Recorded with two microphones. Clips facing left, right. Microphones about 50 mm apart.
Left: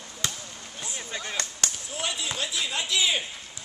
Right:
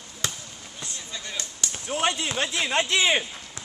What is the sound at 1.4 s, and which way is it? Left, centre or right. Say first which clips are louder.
Basketball bounce: left 3 dB; left.